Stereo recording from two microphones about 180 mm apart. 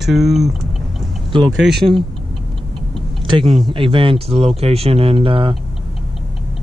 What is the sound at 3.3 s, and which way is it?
Speech, 30° right (ahead or behind).